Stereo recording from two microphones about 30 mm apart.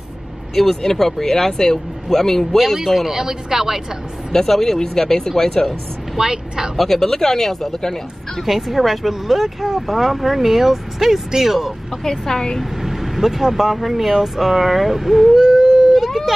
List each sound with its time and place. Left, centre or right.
0.6 s speech: centre
2.5 s speech: centre
3.1 s speech: centre
4.5 s speech: centre
6.1 s a woman's voice: right
6.8 s speech: centre
8.5 s speech: centre
12.0 s speech: centre
12.5 s speech: centre
15.4 s a sound: centre
15.9 s a sound: centre